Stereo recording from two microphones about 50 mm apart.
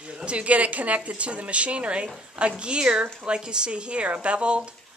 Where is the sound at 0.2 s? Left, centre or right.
Right.